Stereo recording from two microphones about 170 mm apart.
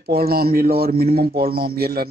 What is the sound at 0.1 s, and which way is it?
A man's voice, 65° right (ahead or behind).